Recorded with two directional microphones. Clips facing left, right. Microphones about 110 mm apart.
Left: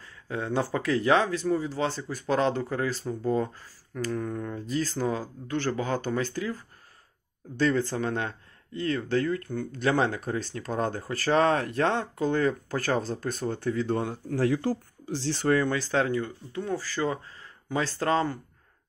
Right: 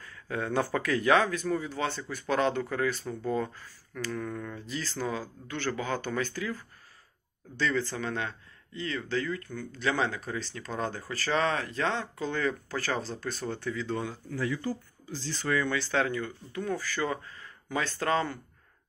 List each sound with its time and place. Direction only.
0.0 s speech: 25° left (ahead or behind)
4.1 s speech: 25° left (ahead or behind)
4.6 s speech: 45° left (ahead or behind)
7.5 s speech: 50° left (ahead or behind)
14.3 s speech: 80° left
15.4 s speech: 45° left (ahead or behind)